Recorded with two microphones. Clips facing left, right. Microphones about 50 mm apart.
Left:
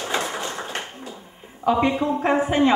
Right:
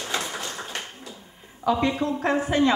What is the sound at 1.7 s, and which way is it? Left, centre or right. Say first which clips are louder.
A woman's voice: left 3 dB; left.